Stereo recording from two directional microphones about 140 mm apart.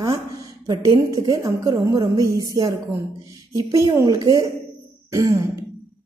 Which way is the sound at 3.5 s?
25° right (ahead or behind).